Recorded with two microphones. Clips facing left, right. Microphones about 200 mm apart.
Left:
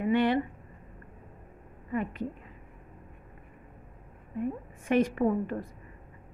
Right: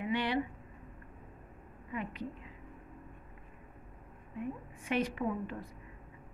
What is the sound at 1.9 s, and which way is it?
Speech, 50° left (ahead or behind).